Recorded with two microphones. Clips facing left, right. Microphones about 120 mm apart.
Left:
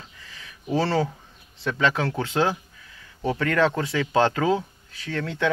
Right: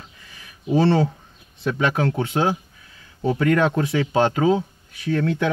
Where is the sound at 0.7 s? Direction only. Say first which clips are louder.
Right 5 dB; 20° right (ahead or behind).